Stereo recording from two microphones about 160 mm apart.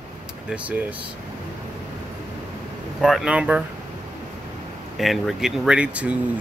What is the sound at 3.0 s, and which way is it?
Speech, centre (ahead or behind).